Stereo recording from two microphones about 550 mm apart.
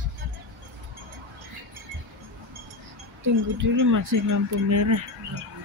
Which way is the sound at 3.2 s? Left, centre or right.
Right.